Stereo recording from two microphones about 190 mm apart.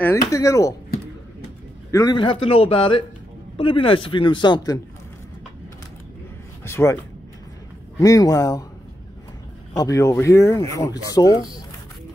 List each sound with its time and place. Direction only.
0.0 s speech: 15° left (ahead or behind)
1.9 s speech: 20° left (ahead or behind)
6.6 s speech: 15° left (ahead or behind)
8.0 s speech: 20° left (ahead or behind)
9.8 s speech: 15° left (ahead or behind)